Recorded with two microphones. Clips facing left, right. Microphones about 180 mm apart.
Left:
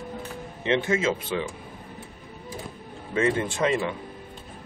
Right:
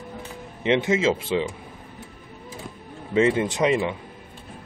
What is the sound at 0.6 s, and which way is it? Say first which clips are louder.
Speech: right 3 dB; 20° right (ahead or behind).